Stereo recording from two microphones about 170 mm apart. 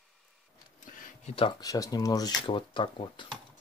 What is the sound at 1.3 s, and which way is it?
Speech, 30° left (ahead or behind).